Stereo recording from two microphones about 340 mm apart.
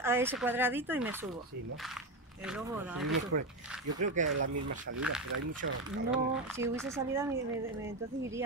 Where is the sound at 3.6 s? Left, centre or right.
Centre.